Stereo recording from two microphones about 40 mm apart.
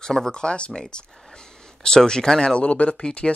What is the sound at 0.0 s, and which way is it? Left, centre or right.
Speech, centre.